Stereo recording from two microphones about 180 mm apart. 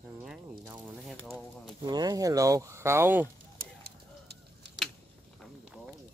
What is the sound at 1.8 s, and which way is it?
Speech, 20° right (ahead or behind).